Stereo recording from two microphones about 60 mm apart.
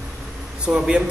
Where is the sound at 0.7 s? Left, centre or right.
Centre.